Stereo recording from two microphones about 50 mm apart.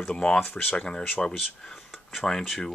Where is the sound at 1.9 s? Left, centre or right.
Centre.